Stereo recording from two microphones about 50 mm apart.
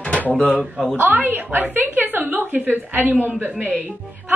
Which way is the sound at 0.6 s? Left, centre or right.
Centre.